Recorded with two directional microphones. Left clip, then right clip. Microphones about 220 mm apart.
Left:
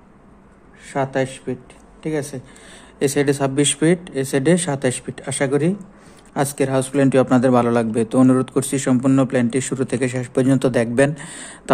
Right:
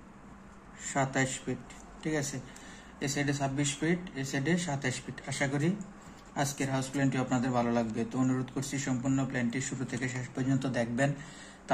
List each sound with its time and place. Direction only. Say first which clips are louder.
0.9 s speech: left 9 dB; 30° left (ahead or behind)
3.0 s a man's voice: left 15 dB; 50° left (ahead or behind)